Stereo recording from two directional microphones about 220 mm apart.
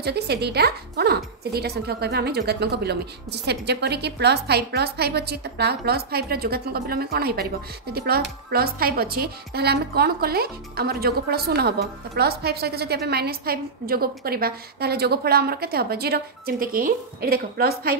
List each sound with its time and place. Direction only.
0.0 s speech: 50° right (ahead or behind)